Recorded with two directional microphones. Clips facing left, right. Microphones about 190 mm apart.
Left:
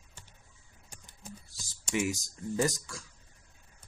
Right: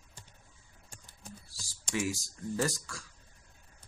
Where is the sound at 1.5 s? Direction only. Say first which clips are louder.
Left 3 dB; 20° left (ahead or behind).